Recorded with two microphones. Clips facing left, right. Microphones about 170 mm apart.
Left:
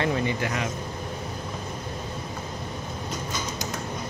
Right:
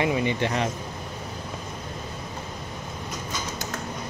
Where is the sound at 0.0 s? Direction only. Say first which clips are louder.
Right 2 dB; 15° right (ahead or behind).